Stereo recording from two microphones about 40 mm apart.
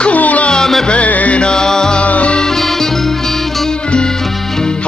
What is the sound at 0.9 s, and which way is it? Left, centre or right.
Music, left.